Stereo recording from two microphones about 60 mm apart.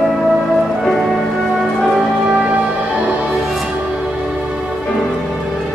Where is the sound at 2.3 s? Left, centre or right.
Right.